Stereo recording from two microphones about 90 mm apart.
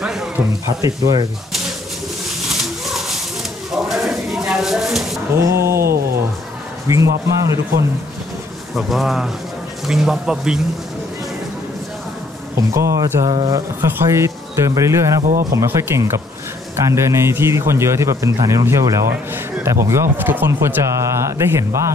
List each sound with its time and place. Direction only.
0.0 s a sound: 5° right (ahead or behind)
0.7 s speech: 40° right (ahead or behind)
2.9 s a sound: 5° right (ahead or behind)
5.4 s speech: 30° right (ahead or behind)
6.9 s speech: 35° right (ahead or behind)
8.7 s speech: centre (ahead or behind)
12.5 s speech: 35° right (ahead or behind)
13.7 s speech: 25° right (ahead or behind)